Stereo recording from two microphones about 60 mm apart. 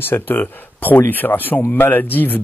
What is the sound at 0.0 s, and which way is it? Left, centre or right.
Speech, left.